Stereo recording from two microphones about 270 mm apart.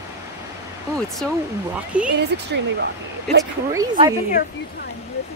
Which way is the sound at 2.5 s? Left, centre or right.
Right.